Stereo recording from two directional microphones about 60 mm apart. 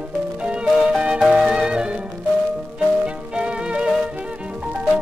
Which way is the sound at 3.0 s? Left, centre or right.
Centre.